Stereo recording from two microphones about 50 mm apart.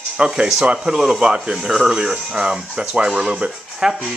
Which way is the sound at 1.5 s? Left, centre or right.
Centre.